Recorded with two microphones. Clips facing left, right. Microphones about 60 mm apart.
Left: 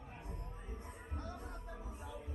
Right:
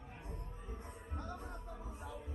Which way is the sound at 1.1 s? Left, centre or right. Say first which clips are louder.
Right 2 dB; right.